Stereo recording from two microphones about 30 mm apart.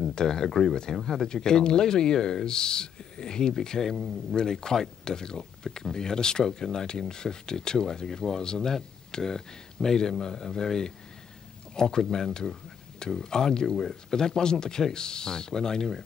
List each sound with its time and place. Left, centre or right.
0.1 s speech: left
4.4 s speech: left